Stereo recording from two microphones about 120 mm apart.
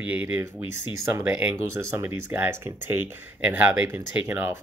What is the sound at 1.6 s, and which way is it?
Speech, 25° right (ahead or behind).